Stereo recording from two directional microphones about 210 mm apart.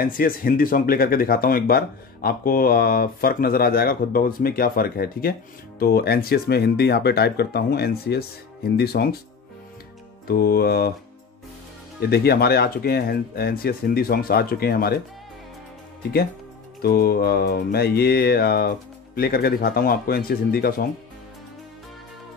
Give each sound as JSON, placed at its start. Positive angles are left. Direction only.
{"t": 0.0, "sound": "speech", "side_deg": 45}
{"t": 10.2, "sound": "speech", "side_deg": 45}
{"t": 12.1, "sound": "speech", "side_deg": 50}
{"t": 16.8, "sound": "speech", "side_deg": 45}